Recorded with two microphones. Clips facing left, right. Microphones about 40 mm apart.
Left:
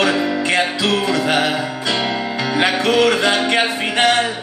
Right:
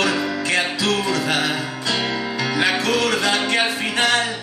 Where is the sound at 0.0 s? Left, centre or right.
Left.